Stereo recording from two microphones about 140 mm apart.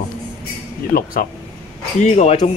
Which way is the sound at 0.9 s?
90° left.